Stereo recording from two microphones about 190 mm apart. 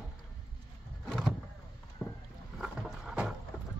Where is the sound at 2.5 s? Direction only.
5° right (ahead or behind).